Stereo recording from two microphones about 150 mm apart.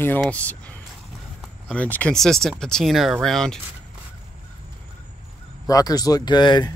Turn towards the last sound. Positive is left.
turn(degrees=30)  # may be behind; listen again after turning